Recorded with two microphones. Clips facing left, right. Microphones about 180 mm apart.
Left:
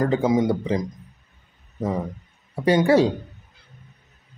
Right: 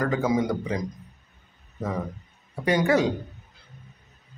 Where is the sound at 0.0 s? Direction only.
25° left (ahead or behind).